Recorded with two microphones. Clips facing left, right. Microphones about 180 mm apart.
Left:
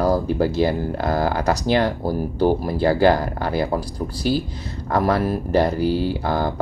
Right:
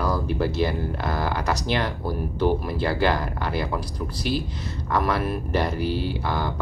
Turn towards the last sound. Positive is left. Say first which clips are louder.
# left 5 dB
turn(degrees=45)  # may be behind; listen again after turning